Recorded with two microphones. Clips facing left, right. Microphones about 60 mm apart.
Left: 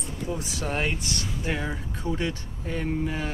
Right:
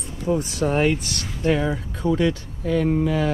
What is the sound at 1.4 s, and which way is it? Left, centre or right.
Speech, right.